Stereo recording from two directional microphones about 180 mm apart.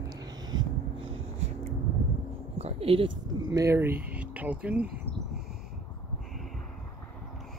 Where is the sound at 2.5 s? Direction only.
35° right (ahead or behind).